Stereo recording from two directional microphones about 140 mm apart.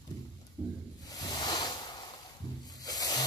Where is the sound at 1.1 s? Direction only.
30° left (ahead or behind).